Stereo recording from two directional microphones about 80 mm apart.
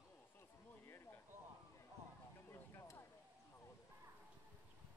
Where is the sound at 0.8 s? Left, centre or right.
Left.